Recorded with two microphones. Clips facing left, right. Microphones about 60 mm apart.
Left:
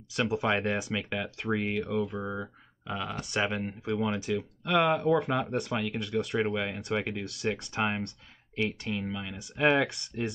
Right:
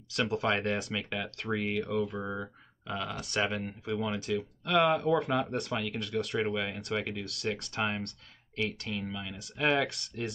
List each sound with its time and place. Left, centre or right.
0.1 s speech: centre
7.7 s speech: centre
9.8 s speech: centre